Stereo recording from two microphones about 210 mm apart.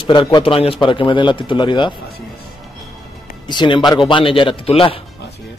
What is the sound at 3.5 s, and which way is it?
A man's voice, 20° left (ahead or behind).